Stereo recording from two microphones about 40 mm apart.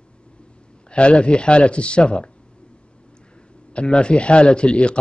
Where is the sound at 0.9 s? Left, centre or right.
Left.